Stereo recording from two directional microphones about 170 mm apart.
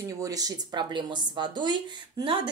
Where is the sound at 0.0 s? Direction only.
20° right (ahead or behind).